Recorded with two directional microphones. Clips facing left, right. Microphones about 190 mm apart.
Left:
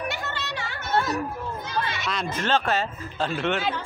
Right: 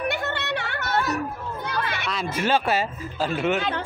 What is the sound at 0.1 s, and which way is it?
Music, 60° right (ahead or behind).